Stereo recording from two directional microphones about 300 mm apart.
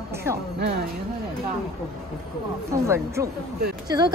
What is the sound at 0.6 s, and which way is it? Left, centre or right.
Speech, right.